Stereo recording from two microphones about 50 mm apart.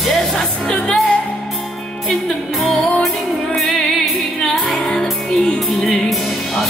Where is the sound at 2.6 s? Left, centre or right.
Centre.